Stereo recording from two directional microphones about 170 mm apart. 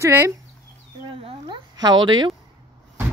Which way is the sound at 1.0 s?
30° right (ahead or behind).